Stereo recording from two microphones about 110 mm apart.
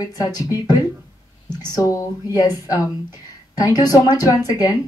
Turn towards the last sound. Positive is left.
turn(degrees=35)  # may be behind; listen again after turning